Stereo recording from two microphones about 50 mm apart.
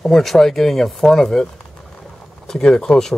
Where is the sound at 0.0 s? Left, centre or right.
Centre.